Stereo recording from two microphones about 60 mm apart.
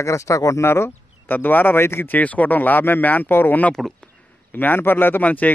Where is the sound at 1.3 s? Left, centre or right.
Left.